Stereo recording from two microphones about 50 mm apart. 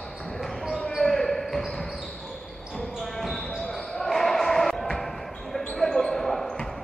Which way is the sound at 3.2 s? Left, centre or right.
Centre.